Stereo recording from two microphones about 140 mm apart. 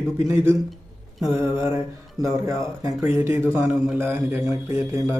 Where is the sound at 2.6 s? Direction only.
20° right (ahead or behind).